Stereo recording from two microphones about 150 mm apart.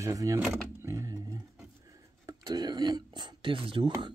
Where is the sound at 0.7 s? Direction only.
20° right (ahead or behind); by 3.9 s 35° right (ahead or behind).